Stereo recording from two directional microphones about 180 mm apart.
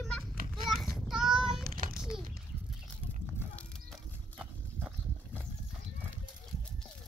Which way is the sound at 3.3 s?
5° left (ahead or behind).